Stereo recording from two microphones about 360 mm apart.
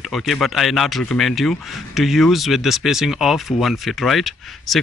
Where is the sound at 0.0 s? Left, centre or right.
Centre.